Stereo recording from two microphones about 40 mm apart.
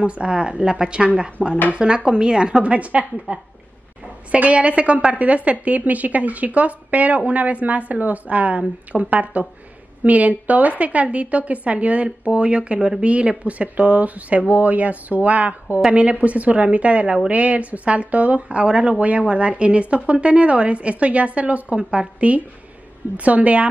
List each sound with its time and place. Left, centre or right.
0.0 s speech: right
2.6 s a woman's voice: right